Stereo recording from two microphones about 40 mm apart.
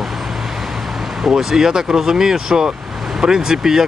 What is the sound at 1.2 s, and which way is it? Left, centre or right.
Speech, centre.